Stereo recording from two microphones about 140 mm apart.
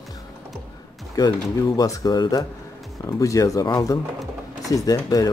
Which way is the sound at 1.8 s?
25° left (ahead or behind).